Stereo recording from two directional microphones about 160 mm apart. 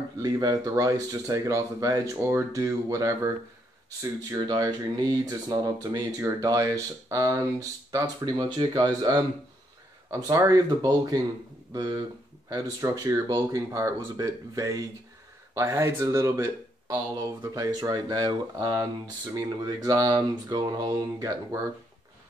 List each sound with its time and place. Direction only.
0.2 s speech: 25° right (ahead or behind)
4.2 s speech: 25° right (ahead or behind)